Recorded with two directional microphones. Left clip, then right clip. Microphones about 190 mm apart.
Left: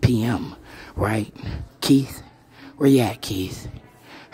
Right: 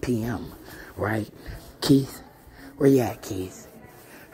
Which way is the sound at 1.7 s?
20° left (ahead or behind).